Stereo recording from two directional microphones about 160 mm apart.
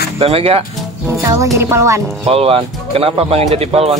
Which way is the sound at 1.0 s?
20° right (ahead or behind).